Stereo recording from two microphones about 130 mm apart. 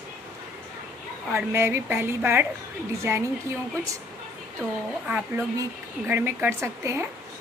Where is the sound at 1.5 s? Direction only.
20° right (ahead or behind).